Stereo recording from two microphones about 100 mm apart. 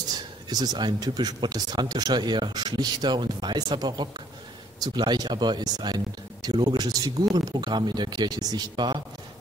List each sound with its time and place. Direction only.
0.1 s speech: 40° right (ahead or behind)